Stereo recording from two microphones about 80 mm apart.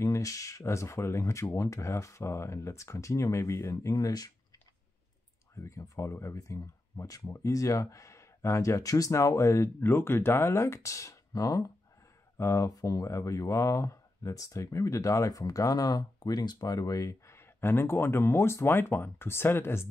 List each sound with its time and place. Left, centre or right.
0.0 s speech: left
3.9 s speech: left
5.6 s speech: left